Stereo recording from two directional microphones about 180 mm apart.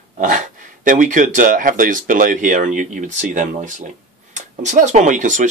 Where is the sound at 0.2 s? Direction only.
45° right (ahead or behind).